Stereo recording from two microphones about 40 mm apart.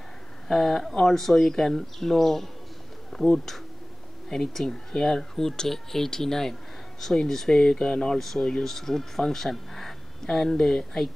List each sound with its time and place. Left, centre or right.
0.5 s speech: centre